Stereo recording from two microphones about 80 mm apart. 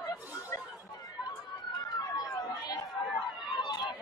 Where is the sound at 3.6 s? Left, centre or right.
Left.